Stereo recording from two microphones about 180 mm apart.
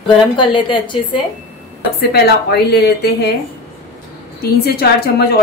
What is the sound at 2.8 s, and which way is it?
Speech, 65° left (ahead or behind).